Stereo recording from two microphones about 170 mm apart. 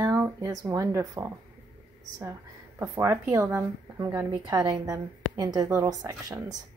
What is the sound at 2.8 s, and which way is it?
Speech, 15° right (ahead or behind).